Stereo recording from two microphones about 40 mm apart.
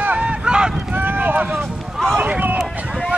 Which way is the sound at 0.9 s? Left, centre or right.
Right.